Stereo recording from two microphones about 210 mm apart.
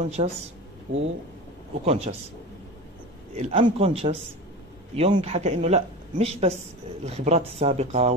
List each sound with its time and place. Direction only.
0.2 s a man's voice: 25° right (ahead or behind)
0.9 s speech: 60° right (ahead or behind)
1.9 s a man's voice: 30° right (ahead or behind)
3.3 s a man's voice: 30° right (ahead or behind)